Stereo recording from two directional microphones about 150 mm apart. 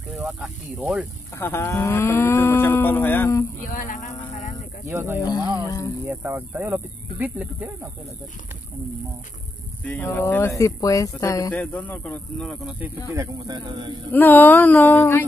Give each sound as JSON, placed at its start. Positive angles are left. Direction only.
{"t": 0.1, "sound": "speech", "side_deg": -5}
{"t": 1.4, "sound": "cattle", "side_deg": 15}
{"t": 3.6, "sound": "music", "side_deg": 60}
{"t": 4.8, "sound": "speech", "side_deg": -15}
{"t": 5.2, "sound": "speech", "side_deg": 25}
{"t": 6.0, "sound": "speech", "side_deg": -15}
{"t": 9.8, "sound": "speech", "side_deg": 10}
{"t": 11.5, "sound": "cattle", "side_deg": 10}
{"t": 13.1, "sound": "speech", "side_deg": -20}
{"t": 14.1, "sound": "cattle", "side_deg": 10}